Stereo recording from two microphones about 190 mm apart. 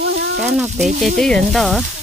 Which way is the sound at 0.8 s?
40° right (ahead or behind).